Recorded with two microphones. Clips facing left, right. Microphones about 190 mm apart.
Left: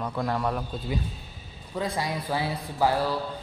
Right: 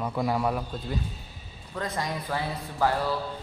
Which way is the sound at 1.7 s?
10° left (ahead or behind).